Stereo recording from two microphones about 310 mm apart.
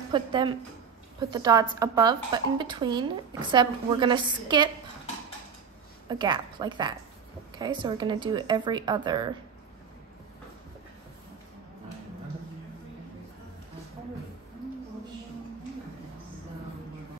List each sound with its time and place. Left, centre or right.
0.1 s a woman's voice: centre
6.0 s a woman's voice: centre